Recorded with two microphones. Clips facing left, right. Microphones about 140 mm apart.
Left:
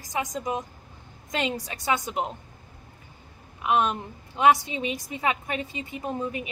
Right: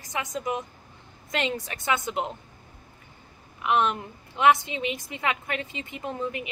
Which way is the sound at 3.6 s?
15° left (ahead or behind).